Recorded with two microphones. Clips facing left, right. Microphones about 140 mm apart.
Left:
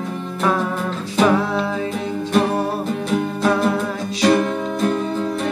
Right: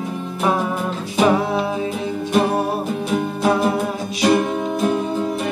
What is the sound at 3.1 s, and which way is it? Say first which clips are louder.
Music: even; 10° right (ahead or behind).